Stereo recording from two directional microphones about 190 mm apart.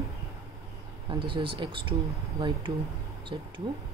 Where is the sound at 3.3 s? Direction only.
25° right (ahead or behind).